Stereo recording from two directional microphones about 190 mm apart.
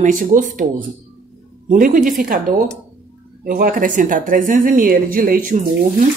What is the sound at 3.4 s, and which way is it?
Speech, 50° right (ahead or behind).